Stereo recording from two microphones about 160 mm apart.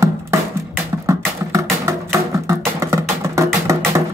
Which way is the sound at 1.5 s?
20° right (ahead or behind).